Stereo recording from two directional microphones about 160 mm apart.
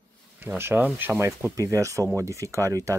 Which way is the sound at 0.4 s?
10° right (ahead or behind).